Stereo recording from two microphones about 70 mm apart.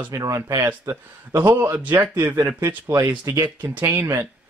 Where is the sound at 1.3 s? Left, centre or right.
Right.